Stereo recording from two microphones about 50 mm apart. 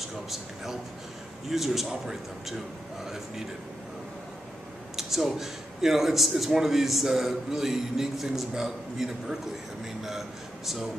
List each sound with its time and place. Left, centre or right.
1.5 s a man's voice: centre
4.9 s a man's voice: centre